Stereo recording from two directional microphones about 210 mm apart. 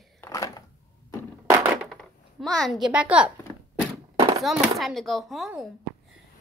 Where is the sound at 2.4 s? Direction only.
Centre (ahead or behind).